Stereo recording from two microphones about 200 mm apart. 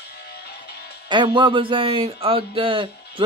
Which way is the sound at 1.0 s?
25° right (ahead or behind).